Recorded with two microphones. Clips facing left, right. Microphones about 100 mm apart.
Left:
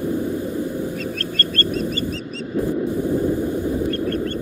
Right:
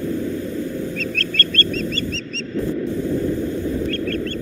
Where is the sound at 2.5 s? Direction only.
15° left (ahead or behind).